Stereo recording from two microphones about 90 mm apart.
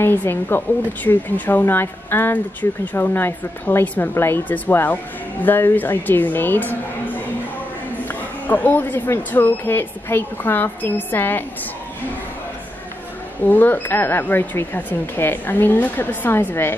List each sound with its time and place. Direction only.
0.0 s speech: 25° left (ahead or behind)
8.1 s speech: 20° left (ahead or behind)
13.5 s speech: 20° left (ahead or behind)